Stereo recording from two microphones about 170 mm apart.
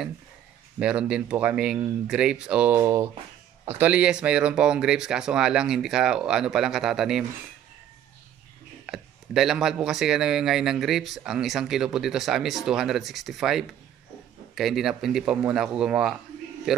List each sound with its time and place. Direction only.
0.7 s speech: 5° right (ahead or behind)
2.8 s speech: 20° right (ahead or behind); by 7.2 s centre (ahead or behind)
8.8 s a man's voice: centre (ahead or behind)